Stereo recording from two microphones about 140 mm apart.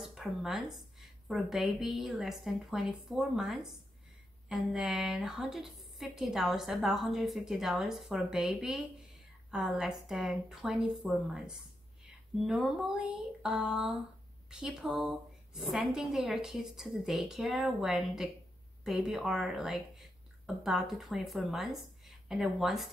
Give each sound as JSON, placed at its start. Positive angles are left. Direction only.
{"t": 0.0, "sound": "a woman's voice", "side_deg": -5}